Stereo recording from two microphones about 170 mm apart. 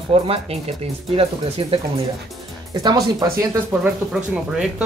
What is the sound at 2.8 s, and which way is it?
Speech, 20° right (ahead or behind).